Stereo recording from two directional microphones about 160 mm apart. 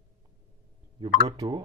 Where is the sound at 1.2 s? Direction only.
25° right (ahead or behind).